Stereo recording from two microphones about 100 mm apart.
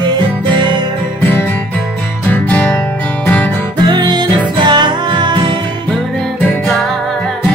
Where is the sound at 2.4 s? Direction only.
10° left (ahead or behind).